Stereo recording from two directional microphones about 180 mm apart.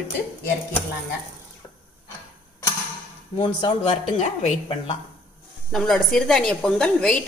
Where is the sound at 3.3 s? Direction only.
30° left (ahead or behind).